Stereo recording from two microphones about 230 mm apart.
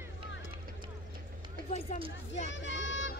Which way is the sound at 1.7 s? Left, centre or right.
Left.